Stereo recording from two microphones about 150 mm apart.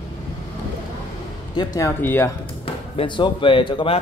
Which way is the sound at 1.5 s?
25° left (ahead or behind).